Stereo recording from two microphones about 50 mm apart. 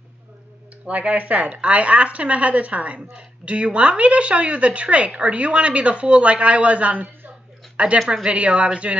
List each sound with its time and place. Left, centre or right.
0.8 s a woman's voice: right
7.7 s a sound: right
8.1 s a woman's voice: centre